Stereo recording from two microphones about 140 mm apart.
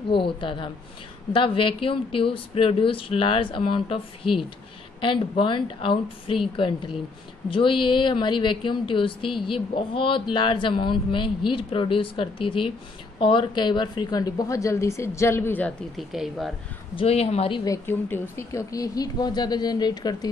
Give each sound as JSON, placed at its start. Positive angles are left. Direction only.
{"t": 0.1, "sound": "a woman's voice", "side_deg": 35}
{"t": 16.1, "sound": "speech", "side_deg": 0}
{"t": 16.9, "sound": "speech", "side_deg": 45}
{"t": 18.3, "sound": "a woman's voice", "side_deg": 20}